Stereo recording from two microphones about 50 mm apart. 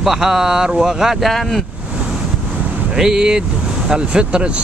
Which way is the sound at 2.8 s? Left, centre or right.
Centre.